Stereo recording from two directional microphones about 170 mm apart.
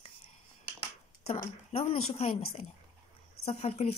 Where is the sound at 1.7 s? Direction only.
35° left (ahead or behind).